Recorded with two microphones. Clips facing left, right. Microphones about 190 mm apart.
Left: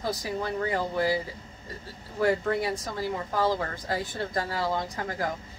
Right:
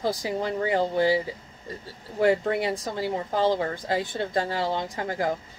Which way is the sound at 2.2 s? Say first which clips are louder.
Right 3 dB; 25° right (ahead or behind).